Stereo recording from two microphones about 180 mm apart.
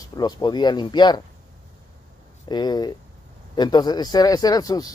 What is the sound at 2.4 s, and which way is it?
Speech, 25° left (ahead or behind).